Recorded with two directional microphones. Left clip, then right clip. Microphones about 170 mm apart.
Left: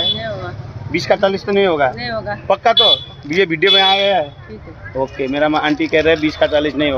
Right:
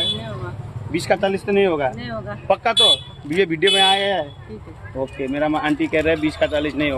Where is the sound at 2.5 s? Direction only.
Centre (ahead or behind).